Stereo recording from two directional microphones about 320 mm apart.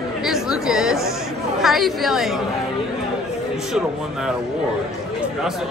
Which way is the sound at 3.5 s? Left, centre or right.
Centre.